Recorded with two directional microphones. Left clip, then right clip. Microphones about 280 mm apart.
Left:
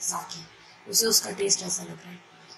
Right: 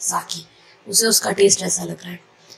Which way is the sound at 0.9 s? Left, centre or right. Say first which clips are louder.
Right 6 dB; right.